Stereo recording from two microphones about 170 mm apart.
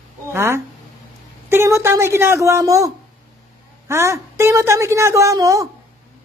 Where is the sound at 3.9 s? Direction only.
15° right (ahead or behind).